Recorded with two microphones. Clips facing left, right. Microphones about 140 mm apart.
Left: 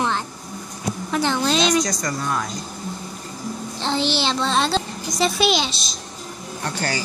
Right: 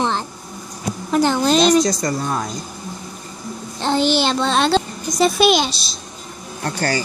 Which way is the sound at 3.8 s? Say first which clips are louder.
Right 5 dB; 50° right (ahead or behind).